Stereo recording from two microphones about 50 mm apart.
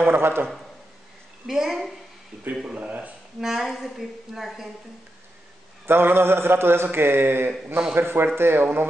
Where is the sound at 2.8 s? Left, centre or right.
Right.